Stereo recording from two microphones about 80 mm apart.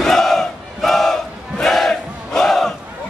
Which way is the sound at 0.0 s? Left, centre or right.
Centre.